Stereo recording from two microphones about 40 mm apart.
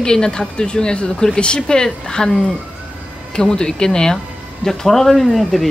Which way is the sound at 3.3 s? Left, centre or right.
Centre.